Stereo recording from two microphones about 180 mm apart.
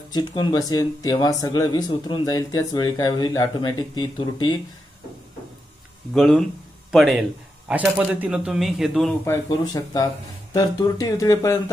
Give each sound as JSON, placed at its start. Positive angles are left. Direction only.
{"t": 0.1, "sound": "speech", "side_deg": 25}
{"t": 6.1, "sound": "speech", "side_deg": 0}
{"t": 9.2, "sound": "speech", "side_deg": 20}